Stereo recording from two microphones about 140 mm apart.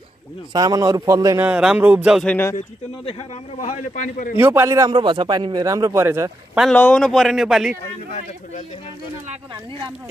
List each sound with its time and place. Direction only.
0.5 s speech: 25° right (ahead or behind)
1.4 s music: 5° right (ahead or behind)
2.2 s speech: 15° left (ahead or behind)
3.6 s a man's voice: 65° left (ahead or behind)
4.4 s speech: 20° right (ahead or behind)
4.9 s speech: 35° right (ahead or behind)
6.7 s speech: 10° left (ahead or behind)